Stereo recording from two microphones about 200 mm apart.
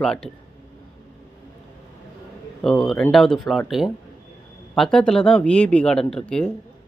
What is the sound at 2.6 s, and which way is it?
Speech, centre (ahead or behind).